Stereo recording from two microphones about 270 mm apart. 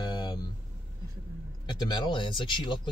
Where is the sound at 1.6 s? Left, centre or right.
Centre.